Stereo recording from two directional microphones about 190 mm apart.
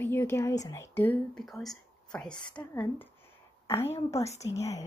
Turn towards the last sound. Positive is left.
turn(degrees=15)  # may be behind; listen again after turning